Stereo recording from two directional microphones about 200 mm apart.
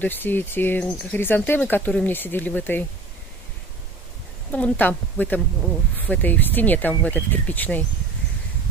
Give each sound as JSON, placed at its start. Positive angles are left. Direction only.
{"t": 0.0, "sound": "speech", "side_deg": 10}
{"t": 4.5, "sound": "speech", "side_deg": 10}